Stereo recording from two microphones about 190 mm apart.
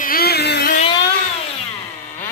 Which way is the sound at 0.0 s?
50° left (ahead or behind).